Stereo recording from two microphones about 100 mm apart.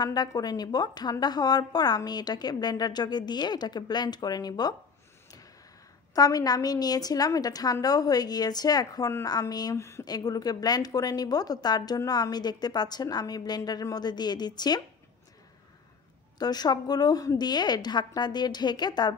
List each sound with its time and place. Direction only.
0.0 s a woman's voice: 40° left (ahead or behind)
6.1 s a woman's voice: 40° left (ahead or behind)
9.8 s speech: 30° left (ahead or behind)
10.0 s a woman's voice: 40° left (ahead or behind)
16.3 s a woman's voice: 45° left (ahead or behind)